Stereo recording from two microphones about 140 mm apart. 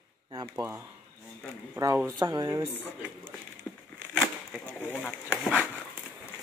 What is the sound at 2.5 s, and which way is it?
Speech, 20° right (ahead or behind).